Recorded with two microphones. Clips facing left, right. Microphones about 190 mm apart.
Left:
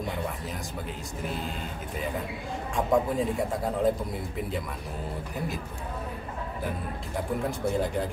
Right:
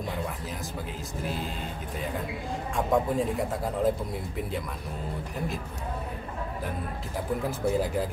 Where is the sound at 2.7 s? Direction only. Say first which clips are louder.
Left 1 dB; centre (ahead or behind).